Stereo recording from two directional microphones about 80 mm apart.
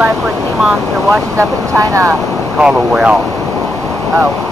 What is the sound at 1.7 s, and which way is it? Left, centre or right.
Speech, right.